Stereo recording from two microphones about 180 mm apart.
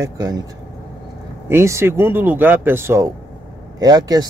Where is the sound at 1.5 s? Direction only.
15° right (ahead or behind).